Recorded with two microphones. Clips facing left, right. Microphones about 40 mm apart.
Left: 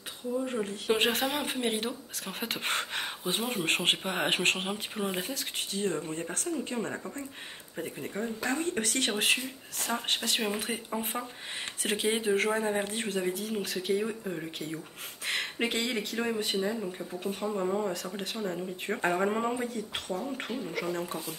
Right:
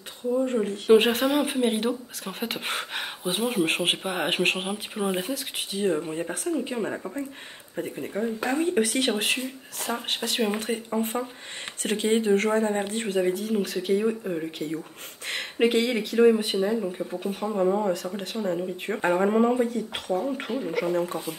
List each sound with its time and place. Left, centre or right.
0.5 s speech: centre
8.5 s speech: centre
9.0 s speech: centre
15.5 s speech: centre
20.6 s speech: centre
20.9 s speech: centre